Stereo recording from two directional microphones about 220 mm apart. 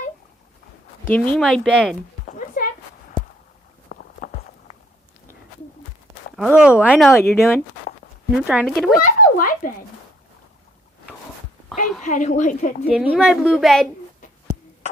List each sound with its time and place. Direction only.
1.0 s a woman's voice: 5° left (ahead or behind)
2.2 s a sound: 35° left (ahead or behind)
3.9 s walk: 40° left (ahead or behind)
6.3 s a woman's voice: centre (ahead or behind)
7.2 s speech: 10° left (ahead or behind)
8.5 s a woman's voice: centre (ahead or behind)
9.0 s a sound: 40° left (ahead or behind)
12.0 s speech: 35° left (ahead or behind)
12.8 s a woman's voice: 5° right (ahead or behind)